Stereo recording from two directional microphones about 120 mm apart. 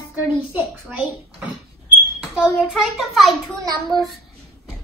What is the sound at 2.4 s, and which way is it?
Speech, centre (ahead or behind).